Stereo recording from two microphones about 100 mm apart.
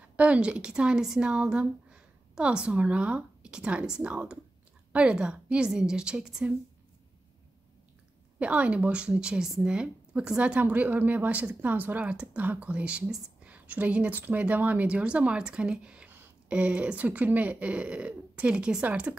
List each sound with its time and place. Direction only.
0.0 s a woman's voice: 15° right (ahead or behind)
8.4 s a woman's voice: 10° right (ahead or behind)